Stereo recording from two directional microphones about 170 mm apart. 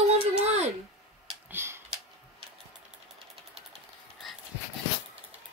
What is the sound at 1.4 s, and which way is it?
Typing, 15° right (ahead or behind).